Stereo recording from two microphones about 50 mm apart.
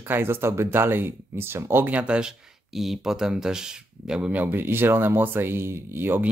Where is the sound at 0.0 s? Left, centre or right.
Right.